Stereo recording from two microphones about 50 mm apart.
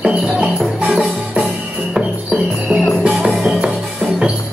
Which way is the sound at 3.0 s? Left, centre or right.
Right.